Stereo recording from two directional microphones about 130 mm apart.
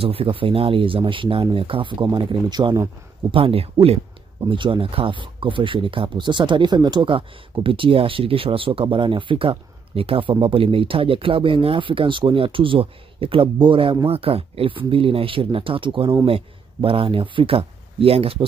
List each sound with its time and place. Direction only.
0.0 s speech: 45° right (ahead or behind); by 2.9 s 30° right (ahead or behind)
3.3 s speech: 45° right (ahead or behind)
4.5 s speech: 40° right (ahead or behind)